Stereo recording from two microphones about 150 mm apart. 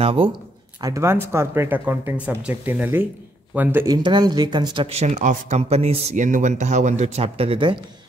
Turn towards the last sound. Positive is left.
turn(degrees=-35)  # may be behind; listen again after turning